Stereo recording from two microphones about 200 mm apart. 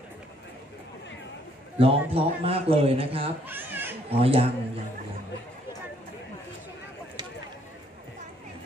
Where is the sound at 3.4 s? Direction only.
10° right (ahead or behind).